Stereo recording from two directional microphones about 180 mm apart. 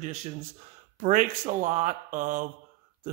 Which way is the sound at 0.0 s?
40° right (ahead or behind).